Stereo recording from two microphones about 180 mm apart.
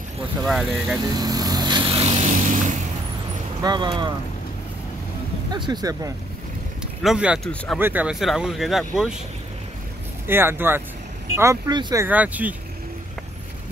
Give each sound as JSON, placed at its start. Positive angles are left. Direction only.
{"t": 0.5, "sound": "speech", "side_deg": 0}
{"t": 1.1, "sound": "vehicle", "side_deg": -20}
{"t": 3.6, "sound": "speech", "side_deg": -25}
{"t": 5.5, "sound": "speech", "side_deg": -25}
{"t": 7.0, "sound": "speech", "side_deg": -5}
{"t": 10.2, "sound": "speech", "side_deg": -10}